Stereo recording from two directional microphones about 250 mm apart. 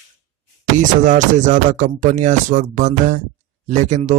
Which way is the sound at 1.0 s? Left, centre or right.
Right.